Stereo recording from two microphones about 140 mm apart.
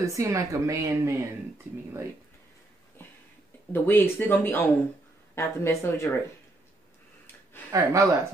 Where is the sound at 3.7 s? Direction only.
15° left (ahead or behind).